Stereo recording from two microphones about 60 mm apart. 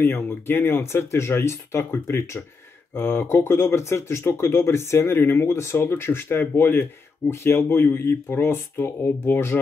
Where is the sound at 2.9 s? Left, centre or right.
Left.